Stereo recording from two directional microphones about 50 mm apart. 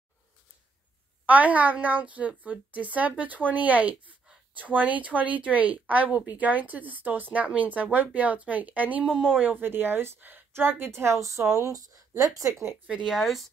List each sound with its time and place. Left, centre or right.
1.2 s speech: right
13.0 s speech: centre